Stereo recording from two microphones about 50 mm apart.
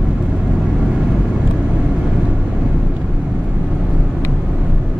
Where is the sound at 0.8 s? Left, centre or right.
Centre.